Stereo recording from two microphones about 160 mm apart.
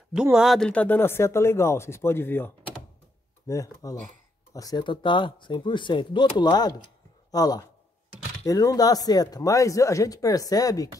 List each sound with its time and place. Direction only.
0.1 s speech: 5° right (ahead or behind); by 10.9 s 20° left (ahead or behind)